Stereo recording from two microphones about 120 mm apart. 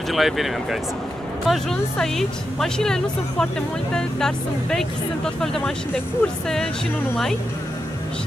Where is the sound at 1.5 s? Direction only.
5° left (ahead or behind).